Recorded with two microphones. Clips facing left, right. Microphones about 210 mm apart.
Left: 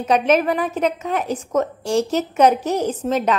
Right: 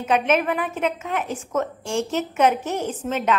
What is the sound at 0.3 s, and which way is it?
Speech, 40° left (ahead or behind).